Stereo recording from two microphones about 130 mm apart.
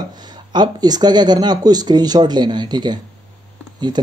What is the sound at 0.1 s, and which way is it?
Speech, 35° right (ahead or behind).